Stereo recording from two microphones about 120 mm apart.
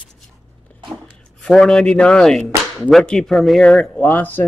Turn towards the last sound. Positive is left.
turn(degrees=15)  # may be behind; listen again after turning